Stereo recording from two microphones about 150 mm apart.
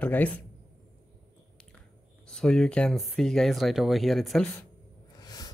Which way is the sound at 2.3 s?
5° left (ahead or behind).